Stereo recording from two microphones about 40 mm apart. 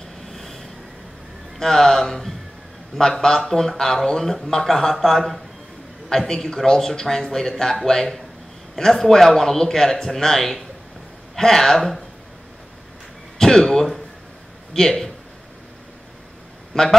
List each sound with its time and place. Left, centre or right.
0.3 s a sound: centre
1.6 s speech: centre
13.4 s speech: centre
16.7 s speech: centre